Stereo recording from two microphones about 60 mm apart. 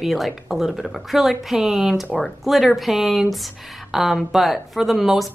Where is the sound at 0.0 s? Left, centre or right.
Centre.